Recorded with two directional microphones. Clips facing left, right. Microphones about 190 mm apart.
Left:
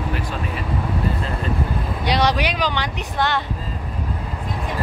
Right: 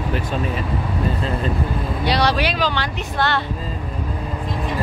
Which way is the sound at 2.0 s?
15° left (ahead or behind).